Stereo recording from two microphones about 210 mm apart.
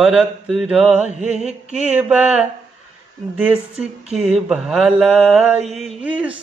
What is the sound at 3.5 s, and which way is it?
Speech, 30° right (ahead or behind).